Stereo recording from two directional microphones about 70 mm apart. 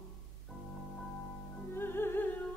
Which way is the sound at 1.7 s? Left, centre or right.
Left.